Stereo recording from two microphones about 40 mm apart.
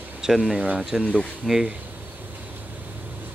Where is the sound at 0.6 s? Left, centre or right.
Right.